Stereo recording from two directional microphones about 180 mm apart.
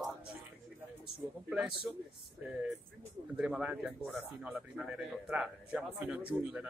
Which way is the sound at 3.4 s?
5° right (ahead or behind).